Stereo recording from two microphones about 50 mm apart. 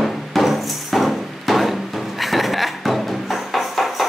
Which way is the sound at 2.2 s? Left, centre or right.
Centre.